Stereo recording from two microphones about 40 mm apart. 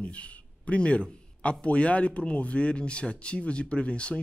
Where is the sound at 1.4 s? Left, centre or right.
Left.